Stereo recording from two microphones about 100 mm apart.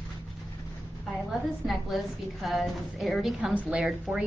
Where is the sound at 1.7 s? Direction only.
Centre (ahead or behind).